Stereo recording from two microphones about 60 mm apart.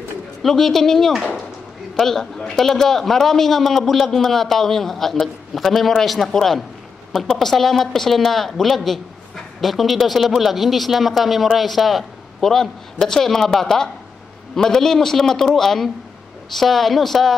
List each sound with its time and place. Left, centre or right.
0.4 s a man's voice: centre